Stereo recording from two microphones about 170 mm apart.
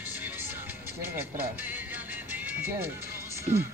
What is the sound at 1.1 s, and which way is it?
Speech, 10° right (ahead or behind).